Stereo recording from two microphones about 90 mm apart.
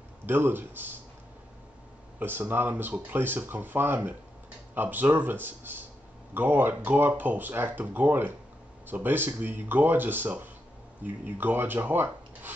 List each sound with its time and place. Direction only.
0.3 s speech: 25° right (ahead or behind)
2.1 s speech: 20° right (ahead or behind)